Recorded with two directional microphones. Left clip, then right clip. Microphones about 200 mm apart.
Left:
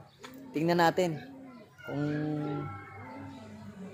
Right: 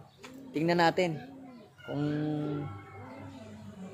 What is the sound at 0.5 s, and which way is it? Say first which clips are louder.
Speech: even; 15° left (ahead or behind).